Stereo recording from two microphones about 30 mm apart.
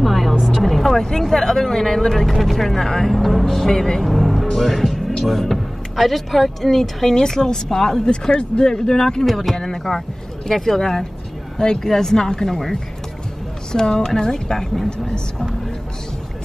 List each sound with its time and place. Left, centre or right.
0.0 s vehicle: centre
0.9 s speech: centre
4.0 s speech: centre
4.5 s music: centre
5.5 s speech: centre
8.1 s speech: left
9.2 s speech: centre
9.6 s speech: centre
12.4 s speech: centre
13.7 s speech: left